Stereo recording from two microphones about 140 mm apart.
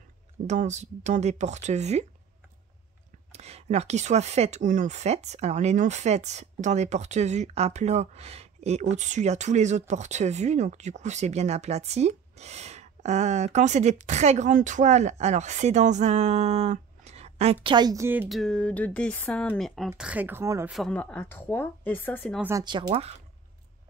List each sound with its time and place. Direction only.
0.5 s speech: 55° right (ahead or behind)
3.3 s speech: 50° right (ahead or behind)
16.7 s a sound: 50° right (ahead or behind)
17.6 s a woman's voice: 30° right (ahead or behind)
18.0 s speech: 15° right (ahead or behind)
18.3 s speech: 5° left (ahead or behind)
20.0 s speech: 10° right (ahead or behind)
20.6 s speech: centre (ahead or behind)
20.9 s speech: 10° left (ahead or behind)
22.4 s a woman's voice: 20° right (ahead or behind)
22.7 s speech: 35° right (ahead or behind)